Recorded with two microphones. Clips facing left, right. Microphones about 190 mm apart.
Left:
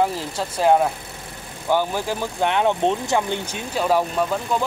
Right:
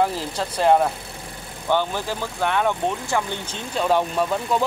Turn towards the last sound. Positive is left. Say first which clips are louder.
# even
turn(degrees=0)  # may be behind; listen again after turning